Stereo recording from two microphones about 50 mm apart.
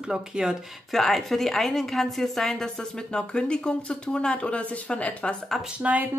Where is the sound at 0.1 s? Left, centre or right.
Centre.